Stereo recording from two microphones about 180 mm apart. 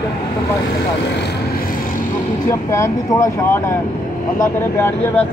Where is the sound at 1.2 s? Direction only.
55° left (ahead or behind).